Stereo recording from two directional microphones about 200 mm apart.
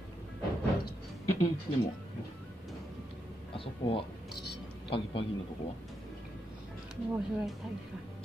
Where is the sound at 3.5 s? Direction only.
25° left (ahead or behind).